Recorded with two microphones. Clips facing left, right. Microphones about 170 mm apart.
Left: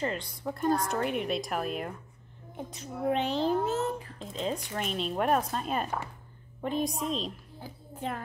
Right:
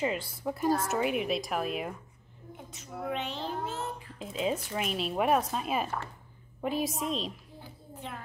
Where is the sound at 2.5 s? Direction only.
35° left (ahead or behind).